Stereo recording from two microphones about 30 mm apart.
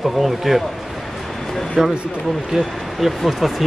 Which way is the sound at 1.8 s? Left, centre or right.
Centre.